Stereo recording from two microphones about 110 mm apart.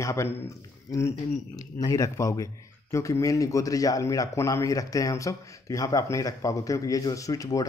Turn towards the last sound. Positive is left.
turn(degrees=30)  # may be behind; listen again after turning